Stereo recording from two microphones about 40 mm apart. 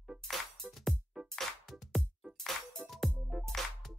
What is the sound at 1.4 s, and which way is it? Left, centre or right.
Music, centre.